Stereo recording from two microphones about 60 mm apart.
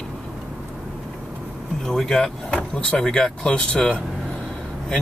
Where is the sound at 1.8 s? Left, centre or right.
Centre.